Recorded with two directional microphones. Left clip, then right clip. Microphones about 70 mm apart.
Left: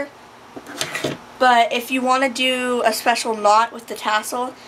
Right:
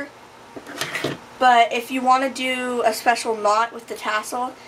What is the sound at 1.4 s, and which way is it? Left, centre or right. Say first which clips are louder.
A woman's voice: even; left.